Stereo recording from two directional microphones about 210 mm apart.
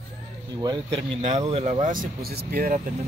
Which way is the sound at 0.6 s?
20° right (ahead or behind).